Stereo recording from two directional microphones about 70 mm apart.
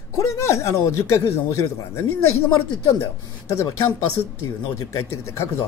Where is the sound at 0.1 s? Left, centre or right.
Left.